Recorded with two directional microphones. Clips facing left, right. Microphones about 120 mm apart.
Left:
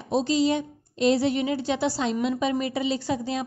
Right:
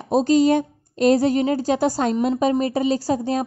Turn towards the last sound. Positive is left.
turn(degrees=-40)  # may be behind; listen again after turning